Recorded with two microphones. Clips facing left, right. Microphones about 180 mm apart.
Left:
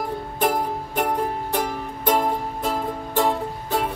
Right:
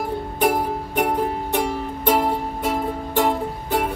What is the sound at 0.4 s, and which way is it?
Music, 5° right (ahead or behind).